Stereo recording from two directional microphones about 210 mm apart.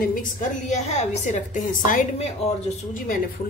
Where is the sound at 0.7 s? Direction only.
35° left (ahead or behind).